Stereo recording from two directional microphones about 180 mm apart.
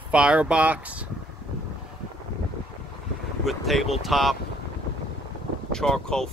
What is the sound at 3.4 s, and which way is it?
Speech, centre (ahead or behind).